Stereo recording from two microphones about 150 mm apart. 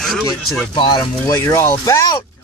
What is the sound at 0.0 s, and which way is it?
Speech, centre (ahead or behind).